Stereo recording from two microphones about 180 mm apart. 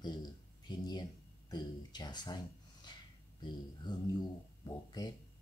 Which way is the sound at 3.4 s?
25° left (ahead or behind).